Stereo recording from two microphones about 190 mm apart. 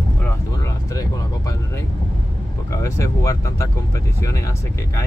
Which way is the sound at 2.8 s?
15° left (ahead or behind).